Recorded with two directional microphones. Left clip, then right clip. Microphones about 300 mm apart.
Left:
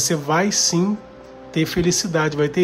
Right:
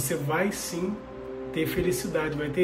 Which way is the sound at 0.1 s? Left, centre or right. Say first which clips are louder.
Left 4 dB; centre.